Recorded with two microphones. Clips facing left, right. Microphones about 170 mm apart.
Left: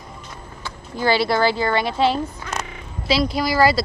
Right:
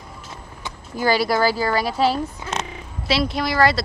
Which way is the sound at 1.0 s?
25° left (ahead or behind).